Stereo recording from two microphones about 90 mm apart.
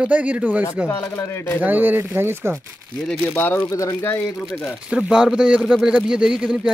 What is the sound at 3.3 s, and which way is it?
Speech, 20° left (ahead or behind).